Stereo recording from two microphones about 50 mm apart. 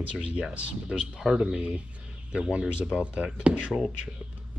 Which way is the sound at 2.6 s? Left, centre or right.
Centre.